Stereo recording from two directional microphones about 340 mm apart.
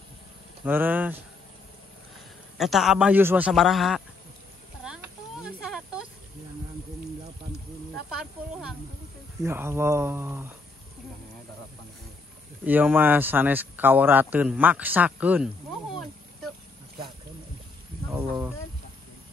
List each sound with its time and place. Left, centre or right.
0.7 s speech: centre
2.5 s speech: centre
5.4 s a sound: centre
8.1 s speech: centre
12.6 s speech: centre
18.1 s speech: centre